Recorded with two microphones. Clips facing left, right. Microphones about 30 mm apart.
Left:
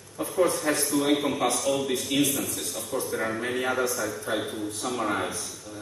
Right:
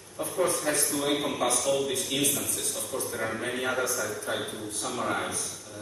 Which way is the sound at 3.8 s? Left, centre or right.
Centre.